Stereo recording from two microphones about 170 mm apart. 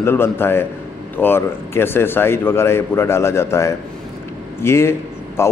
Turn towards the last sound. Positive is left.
turn(degrees=15)  # may be behind; listen again after turning